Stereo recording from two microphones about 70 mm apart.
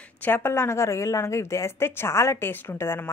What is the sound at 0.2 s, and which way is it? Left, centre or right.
Speech, left.